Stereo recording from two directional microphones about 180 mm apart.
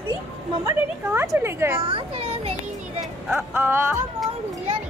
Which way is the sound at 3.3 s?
10° right (ahead or behind).